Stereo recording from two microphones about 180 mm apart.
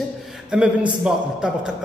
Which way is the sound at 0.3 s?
5° right (ahead or behind).